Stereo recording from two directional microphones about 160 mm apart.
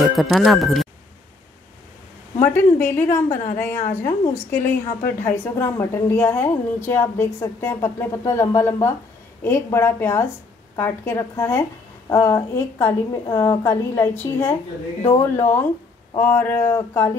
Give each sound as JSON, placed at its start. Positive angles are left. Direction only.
{"t": 0.0, "sound": "speech", "side_deg": 0}
{"t": 2.5, "sound": "a woman's voice", "side_deg": 15}